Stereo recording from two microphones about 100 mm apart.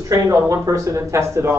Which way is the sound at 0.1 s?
30° right (ahead or behind).